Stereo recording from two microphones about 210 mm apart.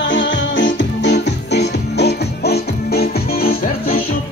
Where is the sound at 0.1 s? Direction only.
60° left (ahead or behind).